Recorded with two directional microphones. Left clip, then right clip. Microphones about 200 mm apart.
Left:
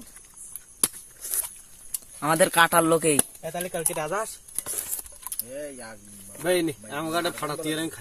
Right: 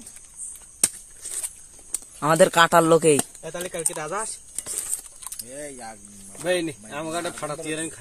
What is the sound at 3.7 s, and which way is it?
Speech, 25° left (ahead or behind).